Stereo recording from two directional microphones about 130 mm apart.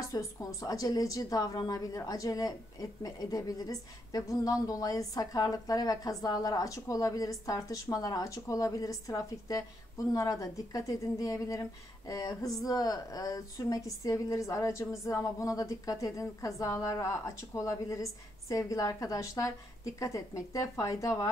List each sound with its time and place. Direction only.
0.0 s a woman's voice: 25° left (ahead or behind)